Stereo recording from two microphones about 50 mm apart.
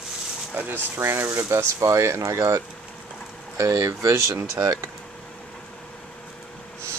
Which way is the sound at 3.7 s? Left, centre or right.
Right.